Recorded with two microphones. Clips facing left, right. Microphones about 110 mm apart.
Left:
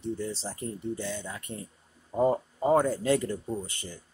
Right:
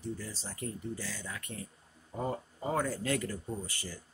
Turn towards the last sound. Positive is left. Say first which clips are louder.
# left 5 dB
turn(degrees=25)  # may be behind; listen again after turning